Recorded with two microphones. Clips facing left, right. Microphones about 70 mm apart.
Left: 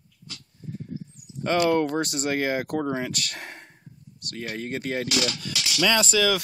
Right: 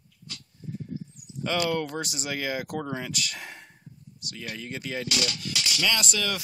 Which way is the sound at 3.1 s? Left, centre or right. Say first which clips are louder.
Even; left.